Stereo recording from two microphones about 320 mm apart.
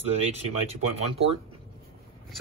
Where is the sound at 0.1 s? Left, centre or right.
Centre.